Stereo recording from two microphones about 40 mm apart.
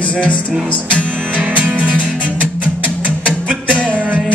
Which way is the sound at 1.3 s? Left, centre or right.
Right.